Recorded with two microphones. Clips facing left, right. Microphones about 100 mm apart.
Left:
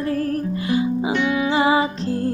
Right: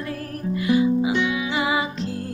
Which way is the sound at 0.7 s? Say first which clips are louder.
Right 2 dB; 30° left (ahead or behind).